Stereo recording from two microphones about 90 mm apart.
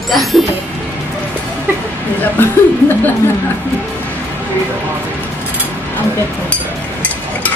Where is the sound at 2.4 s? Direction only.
25° left (ahead or behind).